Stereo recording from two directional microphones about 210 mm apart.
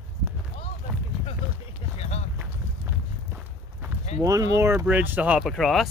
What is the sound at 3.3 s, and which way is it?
Walk, 5° right (ahead or behind).